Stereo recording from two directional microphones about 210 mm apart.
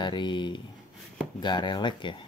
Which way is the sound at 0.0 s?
20° left (ahead or behind).